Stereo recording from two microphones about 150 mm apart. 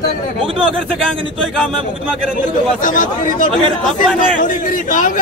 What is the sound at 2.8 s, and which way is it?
Speech, 65° left (ahead or behind).